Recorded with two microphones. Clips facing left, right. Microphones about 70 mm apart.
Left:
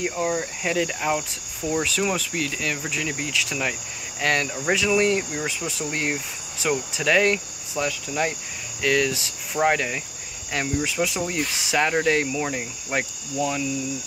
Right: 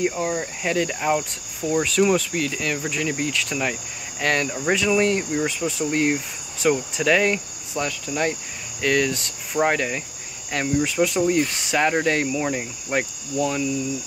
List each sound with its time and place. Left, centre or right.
0.0 s cricket: centre